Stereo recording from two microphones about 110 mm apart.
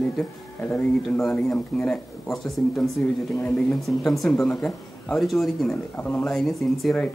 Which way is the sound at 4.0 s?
Centre (ahead or behind).